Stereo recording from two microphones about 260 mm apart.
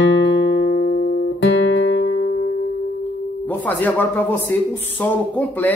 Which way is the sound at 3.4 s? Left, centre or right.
Centre.